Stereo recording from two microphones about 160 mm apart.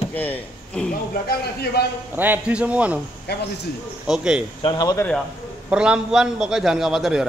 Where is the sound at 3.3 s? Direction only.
90° left.